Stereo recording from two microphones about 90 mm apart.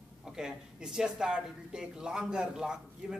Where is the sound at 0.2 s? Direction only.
5° right (ahead or behind).